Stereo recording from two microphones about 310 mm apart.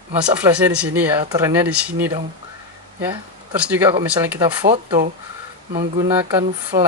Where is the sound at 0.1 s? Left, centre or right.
Centre.